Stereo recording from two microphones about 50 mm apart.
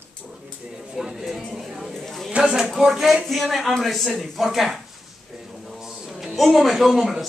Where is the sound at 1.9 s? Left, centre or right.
Centre.